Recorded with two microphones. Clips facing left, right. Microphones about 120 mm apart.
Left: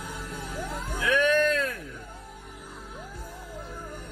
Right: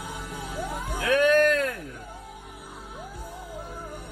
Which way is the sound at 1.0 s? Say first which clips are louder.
Right 3 dB; 45° right (ahead or behind).